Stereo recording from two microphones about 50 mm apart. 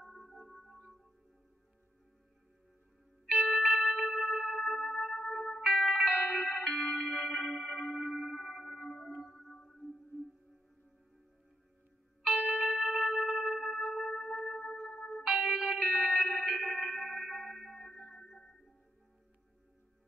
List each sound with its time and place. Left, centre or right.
0.0 s music: centre
3.3 s music: centre
6.8 s music: centre
8.8 s whale vocalization: centre
9.4 s music: centre
12.4 s music: centre
15.2 s music: centre
16.3 s music: centre